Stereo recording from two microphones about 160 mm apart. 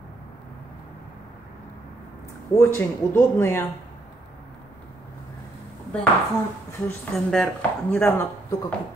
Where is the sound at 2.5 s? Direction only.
15° left (ahead or behind).